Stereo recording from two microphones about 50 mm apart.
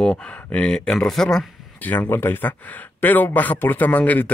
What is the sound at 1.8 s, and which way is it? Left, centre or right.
Speech, left.